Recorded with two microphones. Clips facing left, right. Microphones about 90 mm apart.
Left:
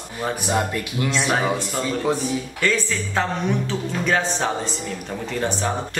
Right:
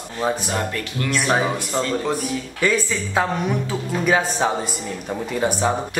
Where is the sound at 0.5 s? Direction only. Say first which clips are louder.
Left 2 dB; 15° left (ahead or behind).